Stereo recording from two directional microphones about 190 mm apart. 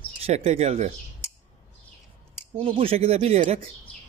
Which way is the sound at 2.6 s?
30° right (ahead or behind).